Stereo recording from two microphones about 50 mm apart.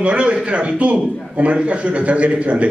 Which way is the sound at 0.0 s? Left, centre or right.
Right.